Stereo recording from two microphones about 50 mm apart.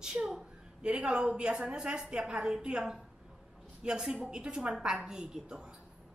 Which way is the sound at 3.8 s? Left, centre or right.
Centre.